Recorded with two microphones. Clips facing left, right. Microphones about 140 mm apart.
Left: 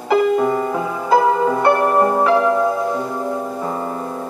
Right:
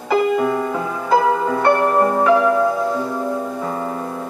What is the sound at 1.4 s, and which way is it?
Music, 10° left (ahead or behind).